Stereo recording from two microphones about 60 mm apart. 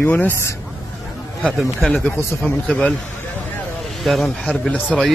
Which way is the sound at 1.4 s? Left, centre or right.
Right.